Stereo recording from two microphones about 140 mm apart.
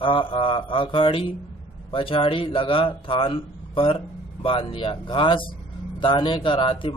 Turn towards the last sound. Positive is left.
turn(degrees=35)  # may be behind; listen again after turning